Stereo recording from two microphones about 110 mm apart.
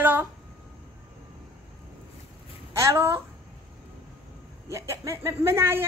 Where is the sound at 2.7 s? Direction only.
25° right (ahead or behind).